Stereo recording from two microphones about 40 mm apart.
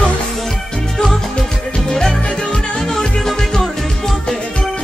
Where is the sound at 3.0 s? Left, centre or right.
Centre.